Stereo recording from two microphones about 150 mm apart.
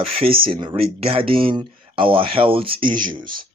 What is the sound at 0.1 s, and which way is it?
Speech, 40° right (ahead or behind).